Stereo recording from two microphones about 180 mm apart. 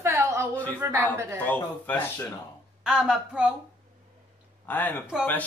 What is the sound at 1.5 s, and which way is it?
Speech, 10° left (ahead or behind).